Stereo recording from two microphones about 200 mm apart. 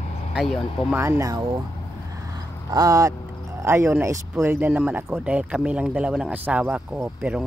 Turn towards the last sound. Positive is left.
turn(degrees=-5)  # may be behind; listen again after turning